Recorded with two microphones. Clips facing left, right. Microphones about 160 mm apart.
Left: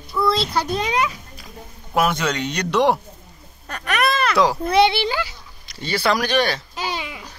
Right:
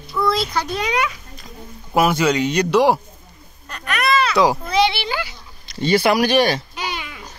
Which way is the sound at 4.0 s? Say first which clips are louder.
Right 2 dB; 50° left (ahead or behind).